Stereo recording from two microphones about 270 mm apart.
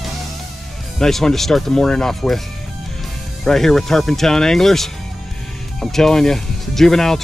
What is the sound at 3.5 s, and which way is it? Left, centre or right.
Speech, centre.